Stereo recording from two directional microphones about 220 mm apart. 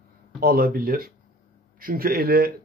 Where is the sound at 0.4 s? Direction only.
45° right (ahead or behind).